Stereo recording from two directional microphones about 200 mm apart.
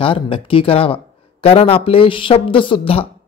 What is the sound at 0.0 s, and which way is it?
A man's voice, 25° left (ahead or behind).